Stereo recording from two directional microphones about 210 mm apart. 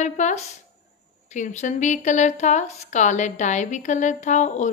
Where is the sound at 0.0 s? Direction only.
35° left (ahead or behind).